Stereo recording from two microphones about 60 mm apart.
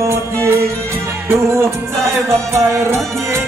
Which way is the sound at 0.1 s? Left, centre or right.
Right.